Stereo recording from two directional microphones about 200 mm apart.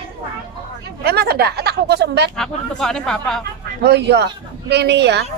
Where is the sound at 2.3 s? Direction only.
5° left (ahead or behind).